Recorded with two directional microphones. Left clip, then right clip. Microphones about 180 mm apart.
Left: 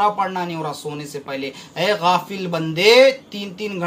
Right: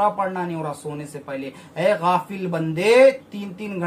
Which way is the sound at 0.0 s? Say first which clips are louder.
Left 2 dB; 10° right (ahead or behind).